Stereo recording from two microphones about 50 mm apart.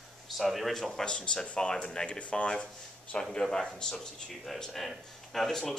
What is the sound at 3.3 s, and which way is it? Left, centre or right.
Speech, centre.